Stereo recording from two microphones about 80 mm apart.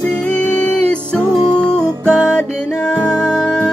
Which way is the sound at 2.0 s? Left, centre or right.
Centre.